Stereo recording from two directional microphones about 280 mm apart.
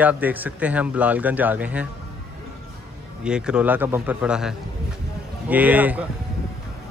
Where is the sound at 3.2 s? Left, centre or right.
Centre.